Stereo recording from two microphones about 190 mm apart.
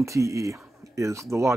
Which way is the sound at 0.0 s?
15° right (ahead or behind).